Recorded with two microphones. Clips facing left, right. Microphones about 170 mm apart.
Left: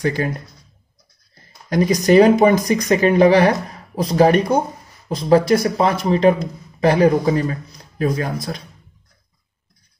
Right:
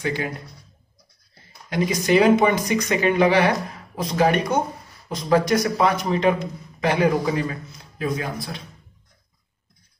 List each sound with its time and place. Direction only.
0.0 s speech: 40° left (ahead or behind)
1.7 s speech: 40° left (ahead or behind)